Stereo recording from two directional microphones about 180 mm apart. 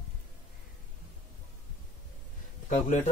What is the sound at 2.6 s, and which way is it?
Speech, 40° left (ahead or behind).